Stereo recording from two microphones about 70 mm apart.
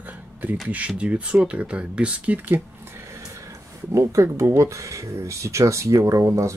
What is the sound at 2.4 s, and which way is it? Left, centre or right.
Speech, right.